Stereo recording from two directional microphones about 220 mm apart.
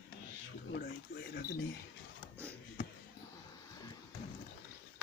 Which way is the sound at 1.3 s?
45° left (ahead or behind).